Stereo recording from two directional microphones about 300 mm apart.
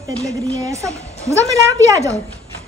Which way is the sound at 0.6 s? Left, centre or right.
Centre.